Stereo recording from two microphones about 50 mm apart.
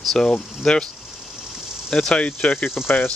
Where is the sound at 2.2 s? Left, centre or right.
Left.